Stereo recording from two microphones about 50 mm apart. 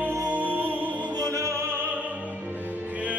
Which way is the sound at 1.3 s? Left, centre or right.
Right.